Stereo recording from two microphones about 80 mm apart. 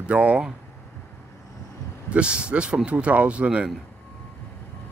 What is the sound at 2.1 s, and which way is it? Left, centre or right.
Speech, centre.